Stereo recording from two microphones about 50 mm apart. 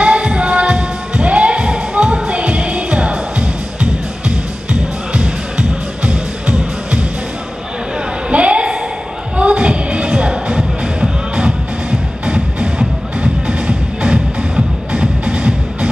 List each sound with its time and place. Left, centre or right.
0.0 s music: centre
8.3 s a sound: right
9.4 s music: right